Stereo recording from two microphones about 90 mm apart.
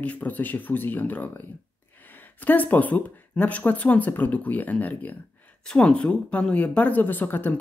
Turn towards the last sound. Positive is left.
turn(degrees=20)  # may be behind; listen again after turning